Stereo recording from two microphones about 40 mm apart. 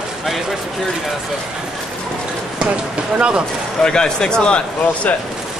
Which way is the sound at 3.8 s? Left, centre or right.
Centre.